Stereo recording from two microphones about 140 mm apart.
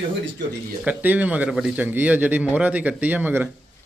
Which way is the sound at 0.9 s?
10° right (ahead or behind).